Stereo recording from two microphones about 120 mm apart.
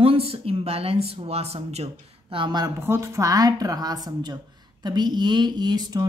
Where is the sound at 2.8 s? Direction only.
20° right (ahead or behind).